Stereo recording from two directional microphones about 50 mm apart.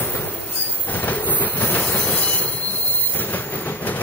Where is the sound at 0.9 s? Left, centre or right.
Left.